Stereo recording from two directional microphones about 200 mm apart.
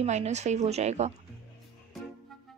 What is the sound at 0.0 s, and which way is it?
Speech, 35° right (ahead or behind).